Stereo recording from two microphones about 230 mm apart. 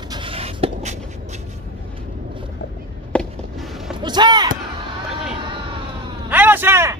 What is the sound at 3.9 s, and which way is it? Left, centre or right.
Basketball bounce, centre.